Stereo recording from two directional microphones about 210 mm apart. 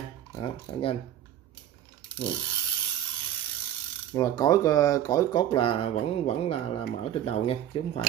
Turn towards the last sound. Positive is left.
turn(degrees=25)  # may be behind; listen again after turning